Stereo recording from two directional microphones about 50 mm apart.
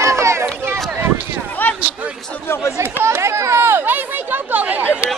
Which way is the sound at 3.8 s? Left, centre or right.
Right.